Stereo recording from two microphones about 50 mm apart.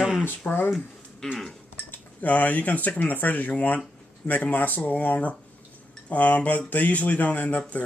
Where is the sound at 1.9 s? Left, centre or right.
Left.